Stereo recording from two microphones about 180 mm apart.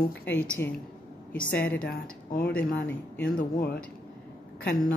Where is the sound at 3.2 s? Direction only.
55° left (ahead or behind).